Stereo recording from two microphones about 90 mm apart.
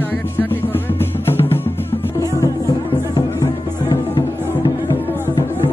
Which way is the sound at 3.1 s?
50° left (ahead or behind).